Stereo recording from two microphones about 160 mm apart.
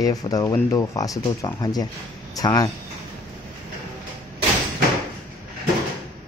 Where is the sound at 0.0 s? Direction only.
20° left (ahead or behind).